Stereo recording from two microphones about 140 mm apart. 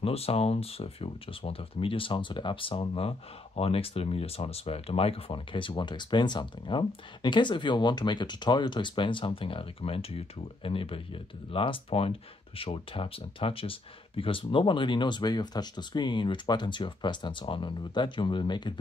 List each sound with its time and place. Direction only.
0.0 s speech: 45° left (ahead or behind)